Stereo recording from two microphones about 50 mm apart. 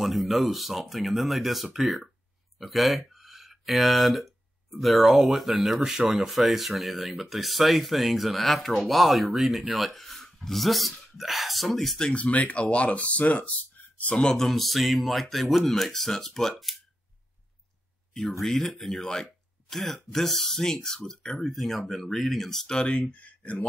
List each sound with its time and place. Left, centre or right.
0.0 s speech: centre
12.0 s speech: left
14.3 s speech: centre
18.4 s speech: centre
22.7 s speech: centre